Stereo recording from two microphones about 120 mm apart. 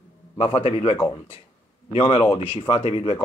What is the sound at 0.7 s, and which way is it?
Speech, 90° left.